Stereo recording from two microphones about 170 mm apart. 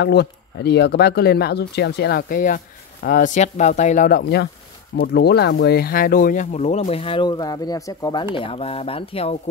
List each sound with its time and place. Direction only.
0.0 s speech: 75° left (ahead or behind); by 9.4 s 35° left (ahead or behind)